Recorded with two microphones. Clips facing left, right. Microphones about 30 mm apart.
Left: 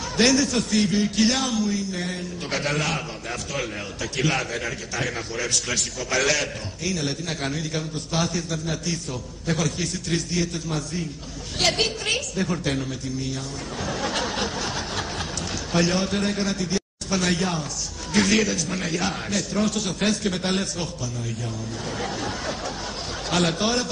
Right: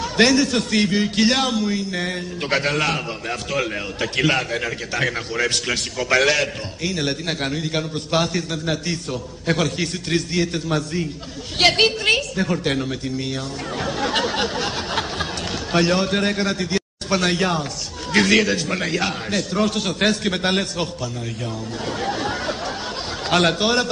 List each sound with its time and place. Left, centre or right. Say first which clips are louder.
0.2 s a man's voice: right 3 dB; right
4.0 s a man's voice: right 5 dB; right
4.5 s a man's voice: right 4 dB; right
5.0 s a man's voice: right 7 dB; right
13.8 s speech: right 4 dB; right
14.1 s a sound: right 5 dB; right
15.8 s a man's voice: right 4 dB; right
18.1 s a man's voice: right 4 dB; right
19.0 s a man's voice: right 3 dB; right
20.2 s a man's voice: right 4 dB; right
23.3 s a man's voice: right 5 dB; right